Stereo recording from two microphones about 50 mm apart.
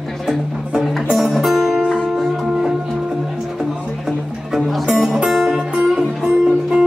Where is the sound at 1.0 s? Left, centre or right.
Centre.